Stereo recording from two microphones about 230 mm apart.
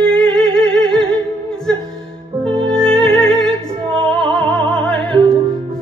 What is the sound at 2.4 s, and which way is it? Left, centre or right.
Music, centre.